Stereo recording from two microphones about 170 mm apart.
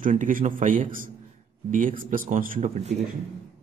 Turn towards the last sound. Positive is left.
turn(degrees=-40)  # may be behind; listen again after turning